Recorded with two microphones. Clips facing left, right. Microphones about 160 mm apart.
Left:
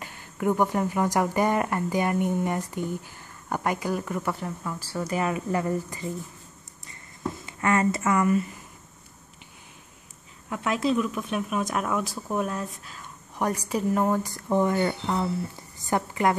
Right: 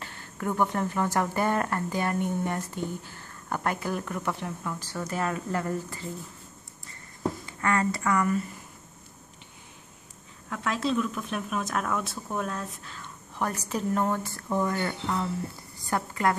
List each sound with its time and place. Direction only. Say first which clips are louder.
0.0 s speech: left 6 dB; 15° left (ahead or behind)
7.4 s speech: left 5 dB; 20° left (ahead or behind)
10.5 s a woman's voice: left 3 dB; 10° left (ahead or behind)